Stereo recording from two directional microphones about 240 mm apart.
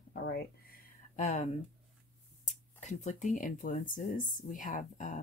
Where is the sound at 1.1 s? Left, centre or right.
Left.